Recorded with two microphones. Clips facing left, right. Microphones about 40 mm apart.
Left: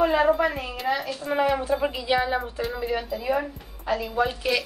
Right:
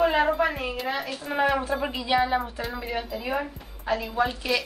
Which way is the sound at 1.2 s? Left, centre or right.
Centre.